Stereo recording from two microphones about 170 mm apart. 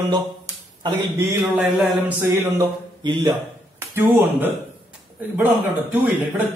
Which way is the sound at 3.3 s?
15° right (ahead or behind).